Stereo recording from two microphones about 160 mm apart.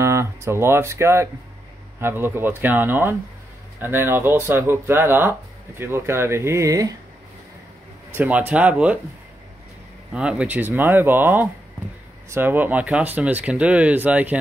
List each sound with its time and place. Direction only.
0.0 s speech: 15° right (ahead or behind)
8.1 s speech: 10° right (ahead or behind)
10.1 s speech: 5° right (ahead or behind)